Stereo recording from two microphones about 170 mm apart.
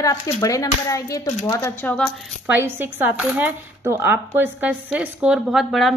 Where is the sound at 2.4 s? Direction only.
10° right (ahead or behind).